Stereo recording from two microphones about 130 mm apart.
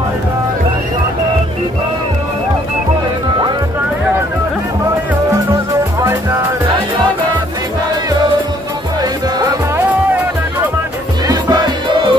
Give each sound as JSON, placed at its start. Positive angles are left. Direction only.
{"t": 11.2, "sound": "music", "side_deg": -30}